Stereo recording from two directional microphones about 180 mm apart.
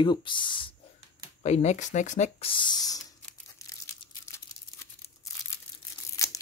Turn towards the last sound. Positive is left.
turn(degrees=20)  # may be behind; listen again after turning